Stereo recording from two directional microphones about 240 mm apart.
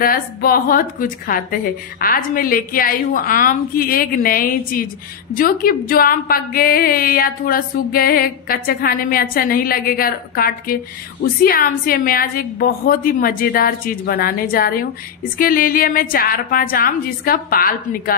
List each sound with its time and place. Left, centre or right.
0.0 s a woman's voice: left